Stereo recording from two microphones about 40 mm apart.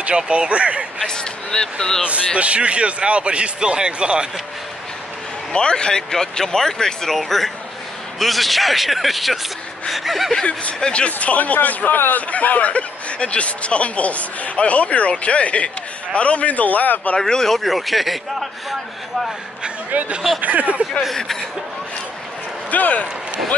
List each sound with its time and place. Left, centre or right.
0.1 s a man's voice: right
1.0 s speech: centre
2.0 s a man's voice: right
5.5 s speech: left; by 10.3 s centre
10.8 s speech: left
17.2 s speech: centre
20.3 s speech: right
22.7 s speech: left